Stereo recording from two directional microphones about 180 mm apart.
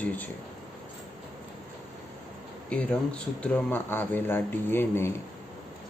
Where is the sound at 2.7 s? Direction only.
5° left (ahead or behind).